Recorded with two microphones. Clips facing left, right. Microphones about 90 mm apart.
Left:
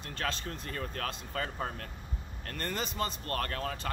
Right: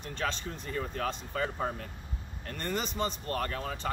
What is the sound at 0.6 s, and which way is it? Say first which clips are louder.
Speech: right 5 dB; 15° right (ahead or behind).